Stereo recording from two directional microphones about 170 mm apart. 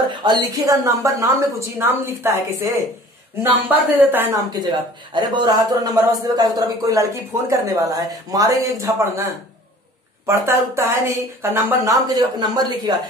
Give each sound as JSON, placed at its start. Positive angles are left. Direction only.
{"t": 0.2, "sound": "speech", "side_deg": -25}
{"t": 10.2, "sound": "speech", "side_deg": -15}